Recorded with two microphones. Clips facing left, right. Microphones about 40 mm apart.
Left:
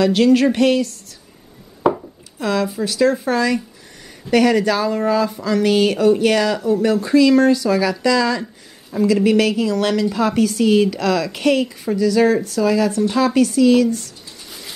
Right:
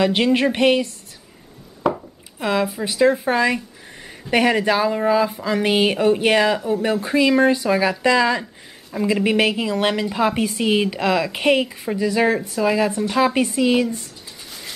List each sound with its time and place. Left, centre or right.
0.0 s speech: right
1.8 s chopping: centre
2.3 s speech: right